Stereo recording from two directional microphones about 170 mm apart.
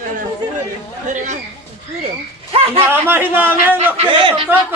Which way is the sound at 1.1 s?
45° right (ahead or behind).